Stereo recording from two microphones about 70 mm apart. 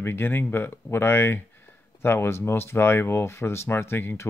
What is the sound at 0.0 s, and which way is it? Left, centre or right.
Speech, left.